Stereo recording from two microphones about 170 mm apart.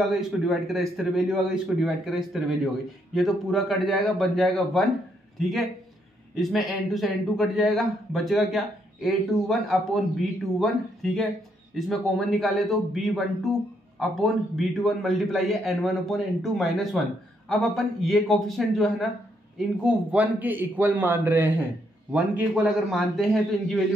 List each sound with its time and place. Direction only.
0.5 s a man's voice: centre (ahead or behind)